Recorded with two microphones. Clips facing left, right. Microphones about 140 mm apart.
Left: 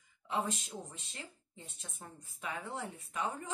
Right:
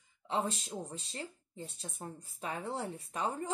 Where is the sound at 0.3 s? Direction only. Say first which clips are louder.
Right 2 dB; 30° right (ahead or behind).